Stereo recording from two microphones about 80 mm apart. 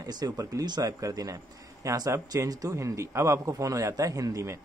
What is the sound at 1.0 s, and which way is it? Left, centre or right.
Speech, right.